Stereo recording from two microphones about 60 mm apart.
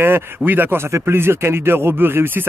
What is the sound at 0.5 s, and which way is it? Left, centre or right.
Speech, right.